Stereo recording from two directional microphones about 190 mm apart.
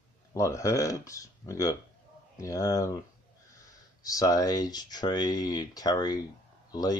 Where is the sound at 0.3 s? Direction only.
15° left (ahead or behind).